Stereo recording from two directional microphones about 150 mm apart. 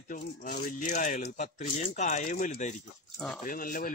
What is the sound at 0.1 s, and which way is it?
Speech, 60° left (ahead or behind).